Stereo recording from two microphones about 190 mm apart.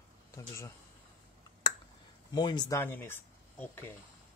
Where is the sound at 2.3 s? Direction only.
25° left (ahead or behind).